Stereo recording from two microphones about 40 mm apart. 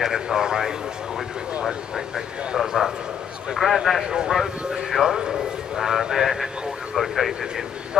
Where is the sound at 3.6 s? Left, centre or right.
Centre.